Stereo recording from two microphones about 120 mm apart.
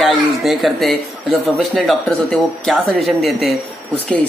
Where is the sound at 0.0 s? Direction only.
Centre (ahead or behind).